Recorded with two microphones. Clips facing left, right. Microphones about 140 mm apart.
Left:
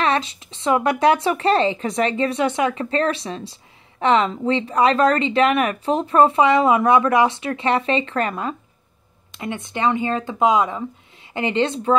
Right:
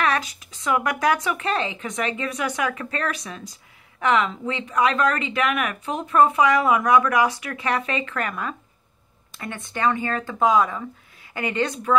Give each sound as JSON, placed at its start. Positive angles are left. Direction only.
{"t": 0.0, "sound": "speech", "side_deg": 25}